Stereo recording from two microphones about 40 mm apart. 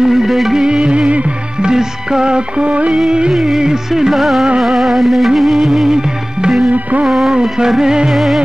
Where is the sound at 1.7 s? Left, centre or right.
Centre.